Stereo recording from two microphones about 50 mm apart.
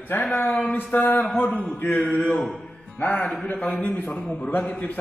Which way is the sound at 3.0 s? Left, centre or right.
Left.